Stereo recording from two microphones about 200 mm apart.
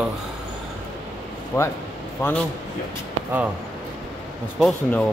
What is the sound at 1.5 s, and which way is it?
Speech, 10° left (ahead or behind).